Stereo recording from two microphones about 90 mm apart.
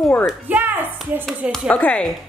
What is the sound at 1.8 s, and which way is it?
Speech, 15° left (ahead or behind).